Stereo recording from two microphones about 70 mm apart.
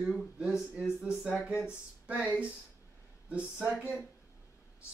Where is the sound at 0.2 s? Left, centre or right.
Centre.